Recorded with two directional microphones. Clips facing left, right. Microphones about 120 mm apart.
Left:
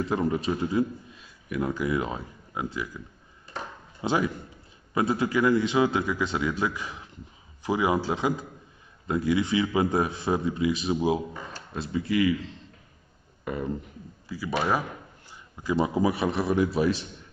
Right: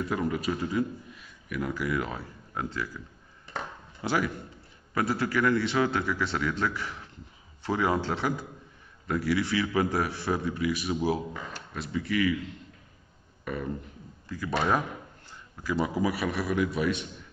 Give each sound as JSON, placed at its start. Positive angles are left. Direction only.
{"t": 0.0, "sound": "a man's voice", "side_deg": 25}
{"t": 4.0, "sound": "a man's voice", "side_deg": 20}
{"t": 13.4, "sound": "a sound", "side_deg": 20}
{"t": 14.3, "sound": "speech", "side_deg": 5}